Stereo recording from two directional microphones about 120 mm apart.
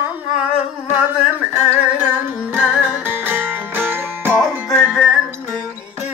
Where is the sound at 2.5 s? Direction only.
10° right (ahead or behind).